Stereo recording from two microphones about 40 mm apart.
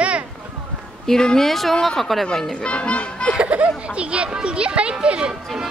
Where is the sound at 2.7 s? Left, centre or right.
Left.